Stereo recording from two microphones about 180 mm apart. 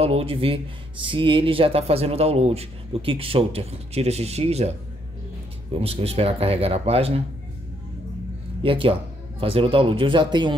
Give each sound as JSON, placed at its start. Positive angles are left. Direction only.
{"t": 0.0, "sound": "speech", "side_deg": -30}
{"t": 8.6, "sound": "speech", "side_deg": -30}